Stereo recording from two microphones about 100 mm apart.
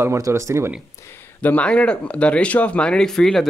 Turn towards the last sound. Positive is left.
turn(degrees=5)  # may be behind; listen again after turning